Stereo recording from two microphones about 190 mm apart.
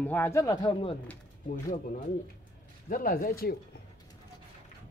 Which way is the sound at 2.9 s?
50° left (ahead or behind).